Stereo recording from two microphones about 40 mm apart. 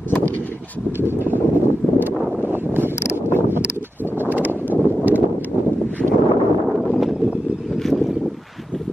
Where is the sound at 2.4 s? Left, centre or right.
Right.